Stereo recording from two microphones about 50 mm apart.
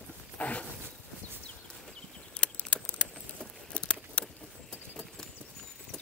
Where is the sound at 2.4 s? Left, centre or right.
Left.